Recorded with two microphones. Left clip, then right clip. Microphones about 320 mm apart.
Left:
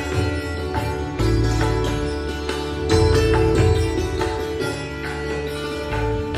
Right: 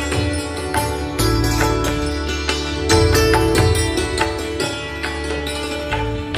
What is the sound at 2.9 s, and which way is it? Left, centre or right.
Music, right.